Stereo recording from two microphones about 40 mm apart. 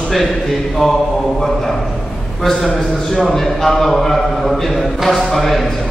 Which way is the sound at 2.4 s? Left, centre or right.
Centre.